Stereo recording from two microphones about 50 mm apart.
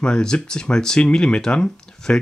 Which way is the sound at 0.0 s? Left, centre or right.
Centre.